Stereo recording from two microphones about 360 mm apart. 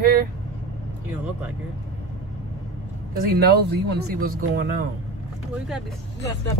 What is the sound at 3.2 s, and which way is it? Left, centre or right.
Speech, right.